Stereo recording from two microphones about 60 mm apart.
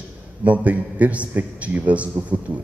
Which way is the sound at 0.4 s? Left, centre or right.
Right.